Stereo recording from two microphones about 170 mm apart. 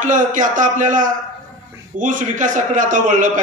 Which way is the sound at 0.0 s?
50° right (ahead or behind).